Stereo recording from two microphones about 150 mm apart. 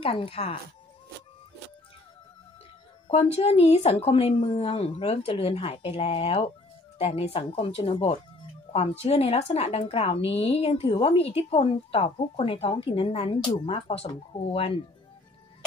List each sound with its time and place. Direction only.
0.0 s a woman's voice: 40° left (ahead or behind)
3.1 s a woman's voice: 45° left (ahead or behind)